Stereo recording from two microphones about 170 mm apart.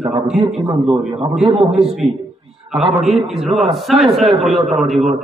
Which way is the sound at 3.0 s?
Centre (ahead or behind).